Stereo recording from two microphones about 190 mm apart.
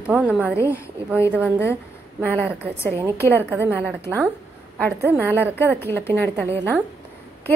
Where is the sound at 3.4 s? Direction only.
10° right (ahead or behind).